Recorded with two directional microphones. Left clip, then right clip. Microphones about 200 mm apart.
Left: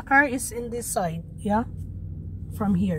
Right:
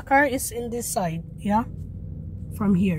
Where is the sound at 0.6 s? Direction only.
15° right (ahead or behind).